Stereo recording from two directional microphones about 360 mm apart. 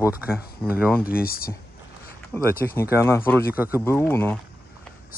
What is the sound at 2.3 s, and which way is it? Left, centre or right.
Speech, centre.